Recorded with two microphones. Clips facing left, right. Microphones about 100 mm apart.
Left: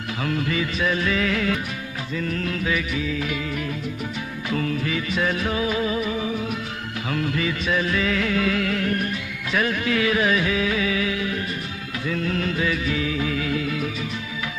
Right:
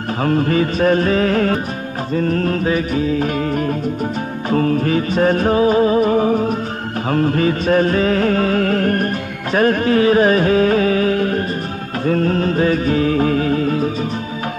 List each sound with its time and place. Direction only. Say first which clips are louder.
0.2 s music: right 9 dB; 40° right (ahead or behind)